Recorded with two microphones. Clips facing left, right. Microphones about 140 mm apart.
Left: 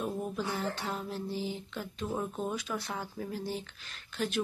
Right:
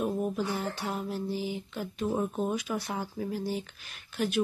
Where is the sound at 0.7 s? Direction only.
10° right (ahead or behind).